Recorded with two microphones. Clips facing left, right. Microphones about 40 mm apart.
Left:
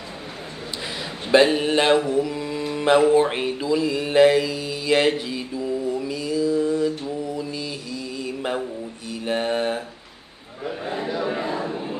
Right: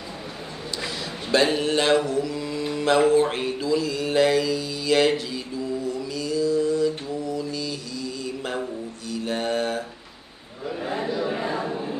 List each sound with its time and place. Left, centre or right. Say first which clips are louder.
1.3 s speech: left 4 dB; centre
2.0 s mantra: left 3 dB; left
11.1 s a sound: left 2 dB; left